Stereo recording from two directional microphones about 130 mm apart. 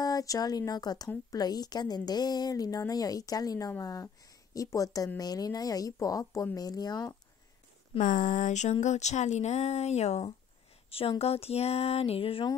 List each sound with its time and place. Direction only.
0.0 s a woman's voice: 30° left (ahead or behind)
8.0 s speech: 75° left (ahead or behind); by 12.4 s 45° left (ahead or behind)